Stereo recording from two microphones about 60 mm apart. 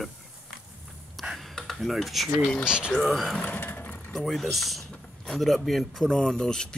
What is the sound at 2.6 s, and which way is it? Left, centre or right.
Speech, centre.